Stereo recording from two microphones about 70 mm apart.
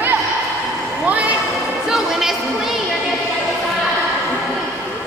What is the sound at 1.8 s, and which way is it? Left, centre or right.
Music, centre.